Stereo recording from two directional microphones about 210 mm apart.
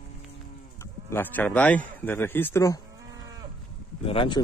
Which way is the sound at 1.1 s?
10° left (ahead or behind).